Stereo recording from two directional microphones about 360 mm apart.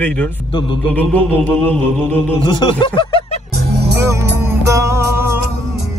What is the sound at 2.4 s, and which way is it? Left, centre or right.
Speech, centre.